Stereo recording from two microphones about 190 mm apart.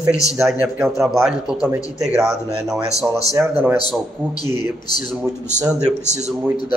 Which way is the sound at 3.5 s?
10° right (ahead or behind).